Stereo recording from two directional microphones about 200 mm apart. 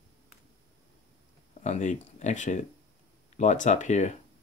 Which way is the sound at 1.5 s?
35° left (ahead or behind).